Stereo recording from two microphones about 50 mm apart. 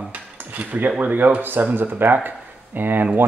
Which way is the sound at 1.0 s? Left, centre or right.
Right.